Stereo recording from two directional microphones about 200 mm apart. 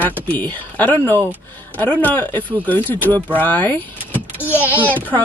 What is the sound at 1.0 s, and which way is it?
Speech, 15° right (ahead or behind).